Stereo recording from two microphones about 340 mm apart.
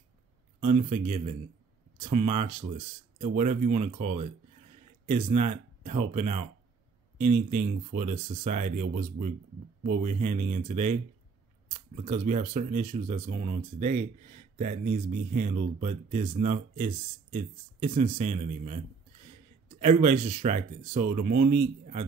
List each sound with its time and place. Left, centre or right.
0.7 s speech: right
12.0 s speech: right
19.8 s speech: centre